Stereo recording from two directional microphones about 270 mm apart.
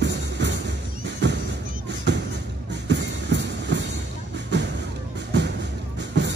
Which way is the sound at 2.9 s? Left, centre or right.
Right.